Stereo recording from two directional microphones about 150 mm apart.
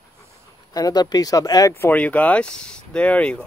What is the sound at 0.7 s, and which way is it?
Speech, 25° left (ahead or behind).